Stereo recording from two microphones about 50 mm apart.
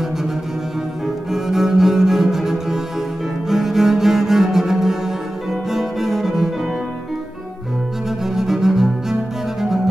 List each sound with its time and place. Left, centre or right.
1.0 s cello: centre
8.4 s cello: centre